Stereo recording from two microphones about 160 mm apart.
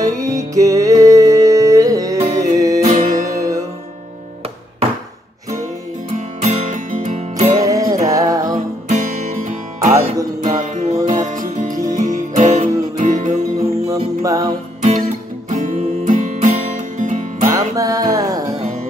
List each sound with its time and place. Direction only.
0.0 s music: 20° right (ahead or behind)
2.1 s music: 50° right (ahead or behind)
2.5 s music: 20° right (ahead or behind)
2.8 s music: 50° right (ahead or behind)
3.1 s music: 20° right (ahead or behind)
6.1 s music: 50° right (ahead or behind)
7.6 s music: 20° right (ahead or behind)
8.5 s music: 50° right (ahead or behind)
13.6 s music: 20° right (ahead or behind)
14.8 s music: 45° right (ahead or behind)
17.7 s music: 20° right (ahead or behind)